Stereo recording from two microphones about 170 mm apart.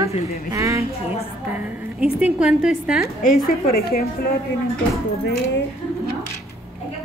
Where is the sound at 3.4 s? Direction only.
60° left (ahead or behind).